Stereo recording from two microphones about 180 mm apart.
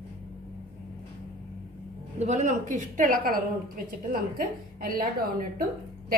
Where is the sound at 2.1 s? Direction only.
40° right (ahead or behind).